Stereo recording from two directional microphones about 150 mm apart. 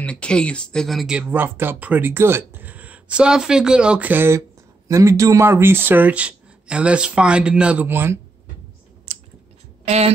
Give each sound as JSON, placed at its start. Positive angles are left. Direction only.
{"t": 0.0, "sound": "speech", "side_deg": 5}
{"t": 9.8, "sound": "a woman's voice", "side_deg": -45}